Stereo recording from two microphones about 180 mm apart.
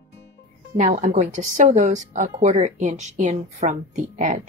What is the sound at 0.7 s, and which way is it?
A woman's voice, 45° right (ahead or behind).